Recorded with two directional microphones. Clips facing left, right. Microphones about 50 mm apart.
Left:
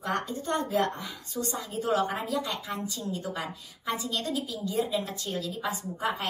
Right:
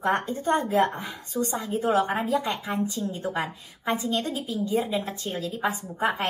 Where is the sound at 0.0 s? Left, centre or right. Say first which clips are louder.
Right 6 dB; right.